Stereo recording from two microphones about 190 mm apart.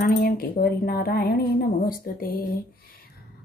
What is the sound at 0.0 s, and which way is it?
Speech, 50° left (ahead or behind).